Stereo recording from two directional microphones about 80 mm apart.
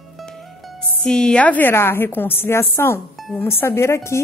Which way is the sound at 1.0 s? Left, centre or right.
Centre.